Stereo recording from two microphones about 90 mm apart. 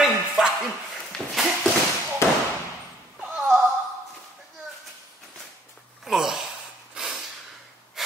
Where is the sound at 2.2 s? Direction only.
30° left (ahead or behind).